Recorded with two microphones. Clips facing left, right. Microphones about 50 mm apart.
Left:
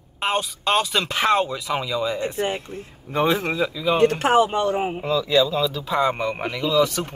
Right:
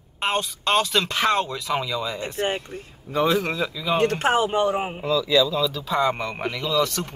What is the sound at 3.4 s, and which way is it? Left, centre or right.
Speech, centre.